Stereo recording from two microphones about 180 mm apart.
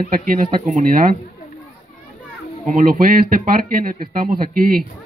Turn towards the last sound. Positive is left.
turn(degrees=-50)  # may be behind; listen again after turning